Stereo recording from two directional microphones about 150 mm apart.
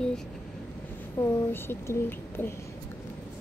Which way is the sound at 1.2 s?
15° left (ahead or behind).